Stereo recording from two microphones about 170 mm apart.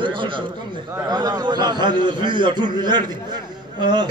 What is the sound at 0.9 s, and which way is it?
A man's voice, 25° right (ahead or behind).